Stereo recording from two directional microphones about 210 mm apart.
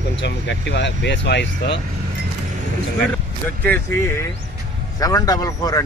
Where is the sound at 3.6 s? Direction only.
10° left (ahead or behind).